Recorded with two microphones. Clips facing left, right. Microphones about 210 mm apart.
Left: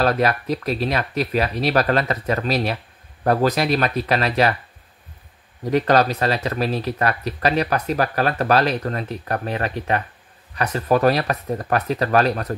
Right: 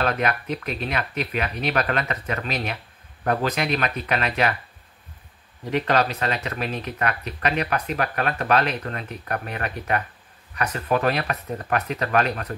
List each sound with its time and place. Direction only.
0.0 s speech: 35° left (ahead or behind)
5.7 s speech: 40° left (ahead or behind)